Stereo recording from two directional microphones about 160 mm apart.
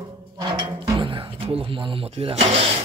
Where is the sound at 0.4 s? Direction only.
25° right (ahead or behind).